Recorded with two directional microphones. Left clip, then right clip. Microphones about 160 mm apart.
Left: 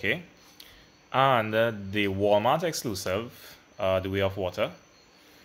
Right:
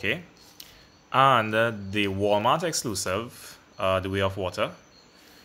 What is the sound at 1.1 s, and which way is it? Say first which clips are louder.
Speech: right 3 dB; 5° right (ahead or behind).